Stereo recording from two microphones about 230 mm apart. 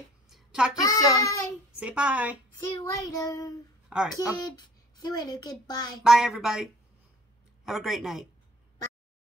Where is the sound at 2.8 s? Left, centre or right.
Centre.